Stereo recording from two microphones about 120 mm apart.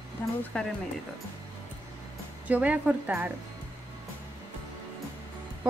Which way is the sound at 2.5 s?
10° right (ahead or behind).